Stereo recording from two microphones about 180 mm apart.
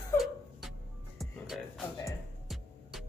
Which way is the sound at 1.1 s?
Centre (ahead or behind).